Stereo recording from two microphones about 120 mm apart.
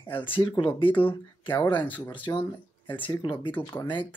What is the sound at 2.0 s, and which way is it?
Speech, 45° left (ahead or behind).